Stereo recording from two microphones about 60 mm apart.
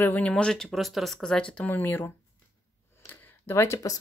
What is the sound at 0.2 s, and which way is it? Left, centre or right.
Speech, centre.